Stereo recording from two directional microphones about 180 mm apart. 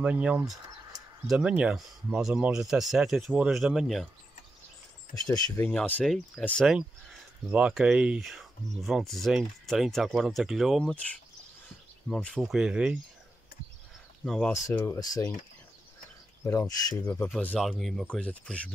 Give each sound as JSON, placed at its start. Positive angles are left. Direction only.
{"t": 0.0, "sound": "speech", "side_deg": -5}
{"t": 5.7, "sound": "speech", "side_deg": 5}
{"t": 7.5, "sound": "speech", "side_deg": -5}
{"t": 12.1, "sound": "speech", "side_deg": 5}
{"t": 14.2, "sound": "speech", "side_deg": 0}
{"t": 14.5, "sound": "speech", "side_deg": 15}
{"t": 16.4, "sound": "speech", "side_deg": 20}
{"t": 17.0, "sound": "speech", "side_deg": 10}